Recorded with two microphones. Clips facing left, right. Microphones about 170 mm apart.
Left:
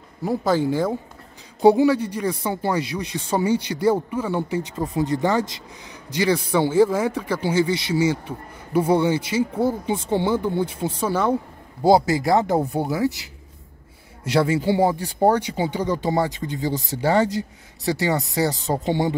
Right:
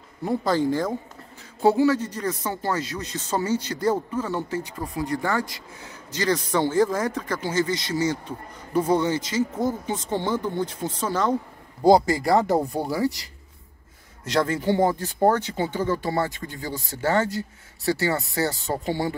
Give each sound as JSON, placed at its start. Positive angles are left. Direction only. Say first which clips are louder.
{"t": 0.2, "sound": "speech", "louder": "left 2 dB", "side_deg": 5}
{"t": 6.1, "sound": "speech", "louder": "left 3 dB", "side_deg": 10}